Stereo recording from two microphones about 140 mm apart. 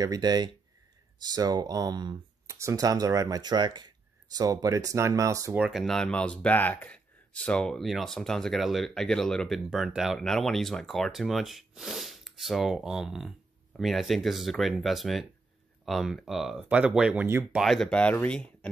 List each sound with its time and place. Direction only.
0.0 s speech: 25° right (ahead or behind)
5.6 s speech: centre (ahead or behind)
17.6 s speech: centre (ahead or behind)